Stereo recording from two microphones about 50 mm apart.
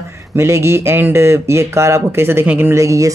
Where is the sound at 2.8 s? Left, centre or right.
Right.